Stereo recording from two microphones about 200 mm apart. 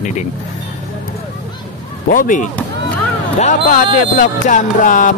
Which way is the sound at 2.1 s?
40° left (ahead or behind).